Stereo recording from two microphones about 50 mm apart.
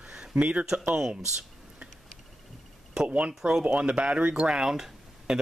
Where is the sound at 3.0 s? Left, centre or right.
Right.